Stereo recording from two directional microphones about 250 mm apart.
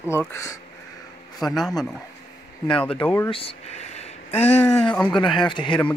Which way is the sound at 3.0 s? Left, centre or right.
Centre.